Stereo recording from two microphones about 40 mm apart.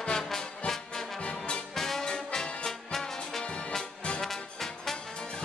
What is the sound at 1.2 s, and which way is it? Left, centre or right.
Brass instrument, left.